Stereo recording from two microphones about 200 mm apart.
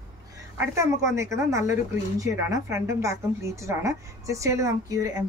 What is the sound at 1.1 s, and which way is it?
A woman's voice, 15° right (ahead or behind).